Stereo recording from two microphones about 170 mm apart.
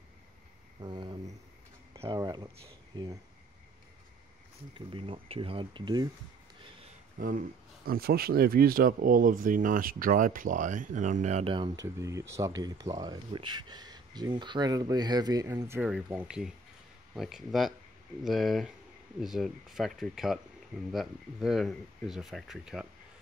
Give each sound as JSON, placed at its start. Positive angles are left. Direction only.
{"t": 0.7, "sound": "a sound", "side_deg": -25}
{"t": 2.1, "sound": "speech", "side_deg": -20}
{"t": 4.7, "sound": "speech", "side_deg": -30}
{"t": 7.2, "sound": "speech", "side_deg": -55}